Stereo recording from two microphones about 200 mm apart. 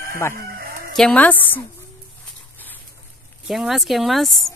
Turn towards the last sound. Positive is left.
turn(degrees=0)  # may be behind; listen again after turning